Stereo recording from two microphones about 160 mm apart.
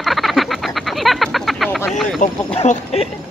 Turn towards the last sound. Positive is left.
turn(degrees=40)  # may be behind; listen again after turning